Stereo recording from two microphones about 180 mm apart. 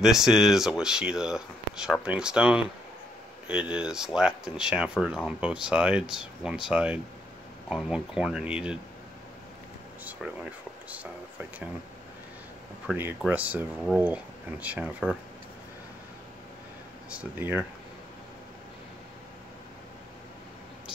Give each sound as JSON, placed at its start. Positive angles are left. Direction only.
{"t": 0.0, "sound": "speech", "side_deg": 0}
{"t": 3.7, "sound": "speech", "side_deg": -5}
{"t": 10.2, "sound": "speech", "side_deg": -5}
{"t": 12.8, "sound": "speech", "side_deg": -10}
{"t": 17.1, "sound": "speech", "side_deg": -10}